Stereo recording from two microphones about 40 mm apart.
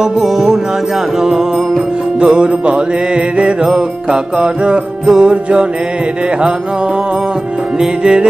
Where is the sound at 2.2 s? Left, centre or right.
Right.